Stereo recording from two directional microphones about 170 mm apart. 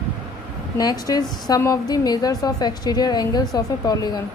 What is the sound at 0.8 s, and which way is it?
Speech, 20° left (ahead or behind).